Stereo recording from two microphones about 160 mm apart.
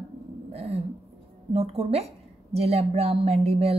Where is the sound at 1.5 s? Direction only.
40° right (ahead or behind).